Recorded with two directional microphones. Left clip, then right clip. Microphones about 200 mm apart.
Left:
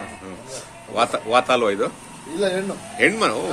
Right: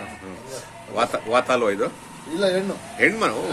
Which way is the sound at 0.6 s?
5° left (ahead or behind).